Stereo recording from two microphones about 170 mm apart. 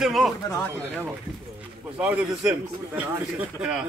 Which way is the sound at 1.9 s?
5° right (ahead or behind).